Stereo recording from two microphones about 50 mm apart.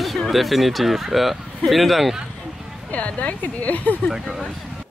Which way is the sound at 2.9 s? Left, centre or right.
Left.